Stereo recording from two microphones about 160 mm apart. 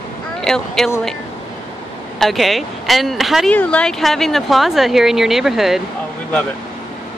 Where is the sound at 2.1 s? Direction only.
Centre (ahead or behind).